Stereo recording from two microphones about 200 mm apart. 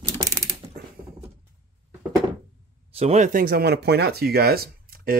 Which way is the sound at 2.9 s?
35° right (ahead or behind).